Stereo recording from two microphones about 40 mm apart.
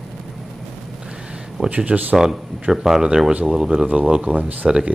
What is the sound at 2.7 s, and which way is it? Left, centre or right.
Speech, centre.